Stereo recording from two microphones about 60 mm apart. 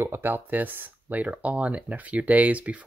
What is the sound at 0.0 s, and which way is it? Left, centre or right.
Speech, right.